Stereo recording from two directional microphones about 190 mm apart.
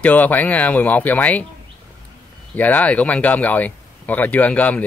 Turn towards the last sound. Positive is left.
turn(degrees=5)  # may be behind; listen again after turning